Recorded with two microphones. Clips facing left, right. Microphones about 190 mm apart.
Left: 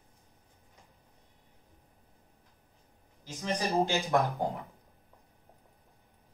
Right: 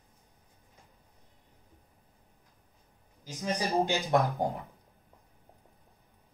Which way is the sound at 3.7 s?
15° right (ahead or behind).